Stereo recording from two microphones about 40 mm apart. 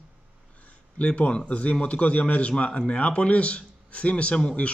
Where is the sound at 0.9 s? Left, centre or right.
Left.